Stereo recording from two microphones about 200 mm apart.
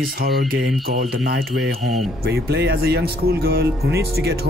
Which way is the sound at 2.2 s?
55° right (ahead or behind).